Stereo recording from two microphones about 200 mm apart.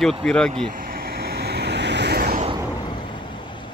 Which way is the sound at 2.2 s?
40° right (ahead or behind).